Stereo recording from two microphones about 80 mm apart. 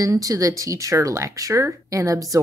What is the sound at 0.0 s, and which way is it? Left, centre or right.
Speech, right.